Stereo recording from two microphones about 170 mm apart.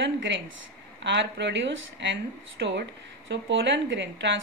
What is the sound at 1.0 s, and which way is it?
Speech, 90° right.